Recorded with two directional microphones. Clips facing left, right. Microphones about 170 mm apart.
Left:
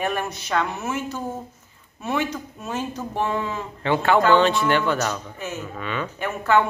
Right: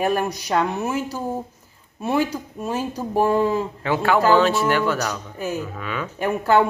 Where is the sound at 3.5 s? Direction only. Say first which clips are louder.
Right 1 dB; 5° right (ahead or behind).